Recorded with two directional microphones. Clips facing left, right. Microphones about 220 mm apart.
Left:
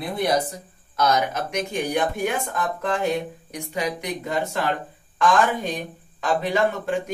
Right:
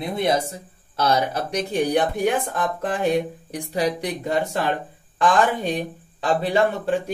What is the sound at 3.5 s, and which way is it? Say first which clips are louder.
Speech: right 4 dB; 35° right (ahead or behind).